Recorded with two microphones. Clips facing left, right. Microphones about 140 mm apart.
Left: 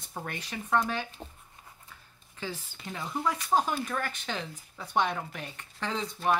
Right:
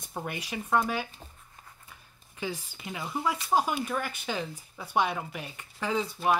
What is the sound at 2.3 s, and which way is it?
Speech, 10° right (ahead or behind).